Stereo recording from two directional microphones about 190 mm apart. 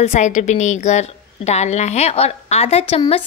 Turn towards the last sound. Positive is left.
turn(degrees=30)  # may be behind; listen again after turning